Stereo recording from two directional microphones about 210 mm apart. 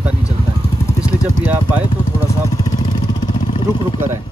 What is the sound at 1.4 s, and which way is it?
Speech, 10° right (ahead or behind).